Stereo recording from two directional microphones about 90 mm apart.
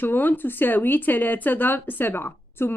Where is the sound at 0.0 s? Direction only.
20° left (ahead or behind).